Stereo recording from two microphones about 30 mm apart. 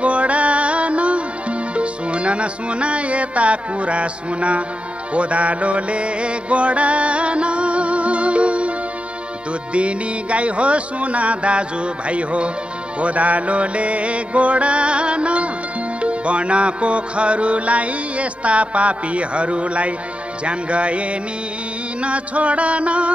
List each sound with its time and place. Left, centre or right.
0.0 s music: right
9.8 s music: right
13.0 s mantra: right
16.0 s music: right